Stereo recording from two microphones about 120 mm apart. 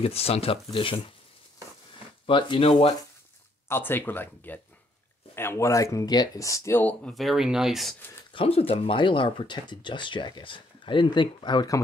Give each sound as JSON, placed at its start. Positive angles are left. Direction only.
{"t": 0.0, "sound": "speech", "side_deg": 55}
{"t": 2.2, "sound": "speech", "side_deg": 45}
{"t": 3.6, "sound": "speech", "side_deg": 20}
{"t": 7.2, "sound": "speech", "side_deg": 0}
{"t": 8.3, "sound": "speech", "side_deg": 50}